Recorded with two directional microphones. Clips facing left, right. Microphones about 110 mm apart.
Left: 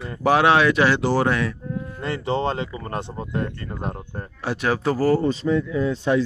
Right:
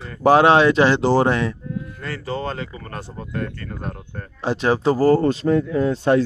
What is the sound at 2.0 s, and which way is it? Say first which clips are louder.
Speech: left 5 dB; 25° left (ahead or behind).